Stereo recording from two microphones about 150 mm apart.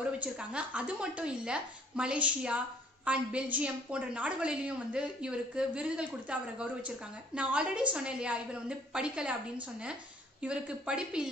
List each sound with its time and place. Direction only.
0.2 s a woman's voice: 10° right (ahead or behind)